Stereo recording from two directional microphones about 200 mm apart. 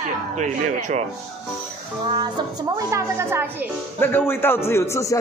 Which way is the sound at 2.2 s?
20° right (ahead or behind).